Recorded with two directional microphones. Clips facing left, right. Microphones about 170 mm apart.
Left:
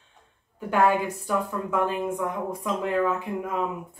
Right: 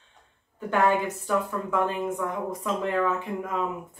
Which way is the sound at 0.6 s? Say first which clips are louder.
Left 1 dB; 10° left (ahead or behind).